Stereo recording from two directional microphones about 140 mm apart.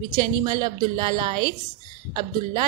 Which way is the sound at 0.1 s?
30° right (ahead or behind).